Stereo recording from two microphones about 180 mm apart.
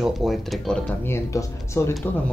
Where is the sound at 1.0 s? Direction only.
15° left (ahead or behind).